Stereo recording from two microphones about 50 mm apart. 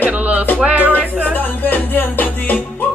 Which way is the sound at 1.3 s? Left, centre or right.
Left.